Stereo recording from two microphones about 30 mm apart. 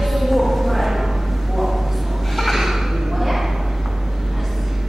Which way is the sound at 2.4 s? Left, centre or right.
Centre.